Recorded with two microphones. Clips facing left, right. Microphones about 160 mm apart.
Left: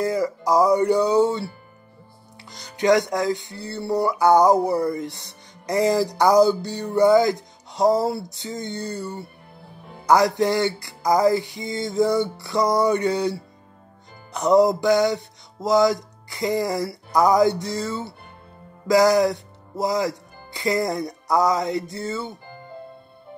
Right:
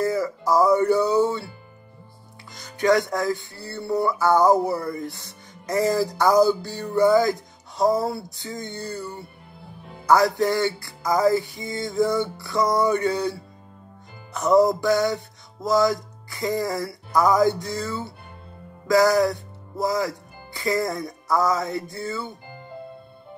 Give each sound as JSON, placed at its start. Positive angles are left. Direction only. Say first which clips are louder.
{"t": 0.0, "sound": "speech", "louder": "left 1 dB", "side_deg": 15}
{"t": 2.8, "sound": "speech", "louder": "left 2 dB", "side_deg": 15}
{"t": 10.0, "sound": "speech", "louder": "left 1 dB", "side_deg": 20}
{"t": 14.3, "sound": "speech", "louder": "left 1 dB", "side_deg": 20}